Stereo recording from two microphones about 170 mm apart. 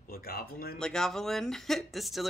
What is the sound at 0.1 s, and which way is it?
Speech, 60° left (ahead or behind).